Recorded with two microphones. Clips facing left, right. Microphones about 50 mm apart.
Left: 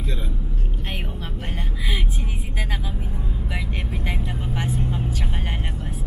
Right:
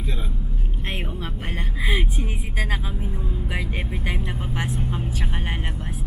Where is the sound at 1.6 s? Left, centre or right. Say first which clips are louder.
Right 5 dB; right.